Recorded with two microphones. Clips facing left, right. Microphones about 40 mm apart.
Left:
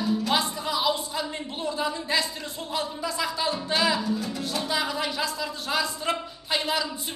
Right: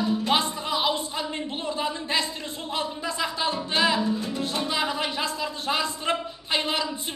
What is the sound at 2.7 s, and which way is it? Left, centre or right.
Speech, right.